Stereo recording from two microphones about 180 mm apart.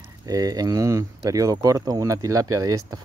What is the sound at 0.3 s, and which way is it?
Speech, 20° right (ahead or behind).